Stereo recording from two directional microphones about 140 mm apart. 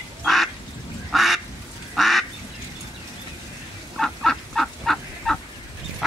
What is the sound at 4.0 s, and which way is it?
Goose, centre (ahead or behind).